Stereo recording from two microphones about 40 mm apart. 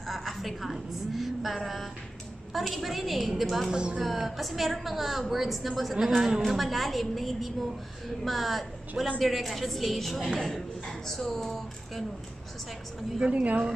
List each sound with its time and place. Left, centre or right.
0.0 s a woman's voice: centre
3.7 s speech: right
4.0 s a woman's voice: centre
13.2 s speech: right